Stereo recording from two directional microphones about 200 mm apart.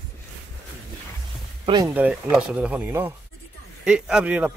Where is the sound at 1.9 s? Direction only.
5° right (ahead or behind).